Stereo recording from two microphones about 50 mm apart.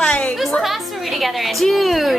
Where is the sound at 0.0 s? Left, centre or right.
Left.